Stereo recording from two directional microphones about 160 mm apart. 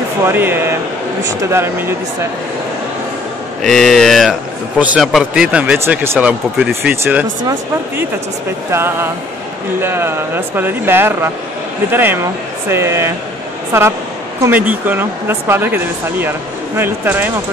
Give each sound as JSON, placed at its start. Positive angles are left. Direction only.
{"t": 0.2, "sound": "speech", "side_deg": -15}
{"t": 3.6, "sound": "speech", "side_deg": 0}
{"t": 8.7, "sound": "speech", "side_deg": -15}
{"t": 14.4, "sound": "speech", "side_deg": -10}